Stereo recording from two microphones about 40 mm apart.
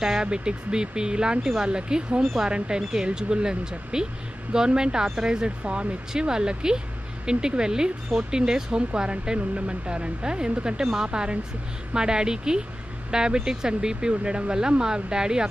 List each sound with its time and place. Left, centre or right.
0.2 s speech: right